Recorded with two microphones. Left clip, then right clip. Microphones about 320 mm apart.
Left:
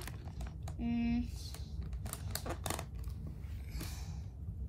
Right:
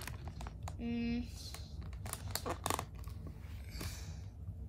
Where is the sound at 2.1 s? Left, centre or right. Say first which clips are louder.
Right 2 dB; centre.